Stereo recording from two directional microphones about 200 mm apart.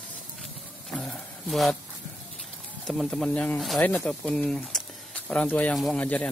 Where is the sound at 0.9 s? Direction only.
5° left (ahead or behind).